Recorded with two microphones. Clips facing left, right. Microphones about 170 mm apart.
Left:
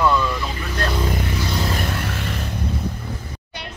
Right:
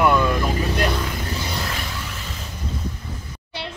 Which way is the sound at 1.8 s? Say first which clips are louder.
Left 6 dB; 60° left (ahead or behind).